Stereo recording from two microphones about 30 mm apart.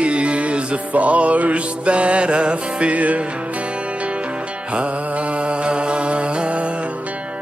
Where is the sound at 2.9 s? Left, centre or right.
Right.